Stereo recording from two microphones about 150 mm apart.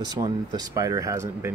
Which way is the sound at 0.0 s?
25° right (ahead or behind).